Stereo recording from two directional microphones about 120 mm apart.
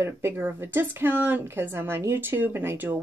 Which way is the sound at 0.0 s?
20° right (ahead or behind).